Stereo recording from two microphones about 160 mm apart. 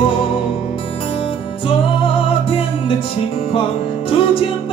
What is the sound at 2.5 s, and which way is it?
Music, 35° left (ahead or behind).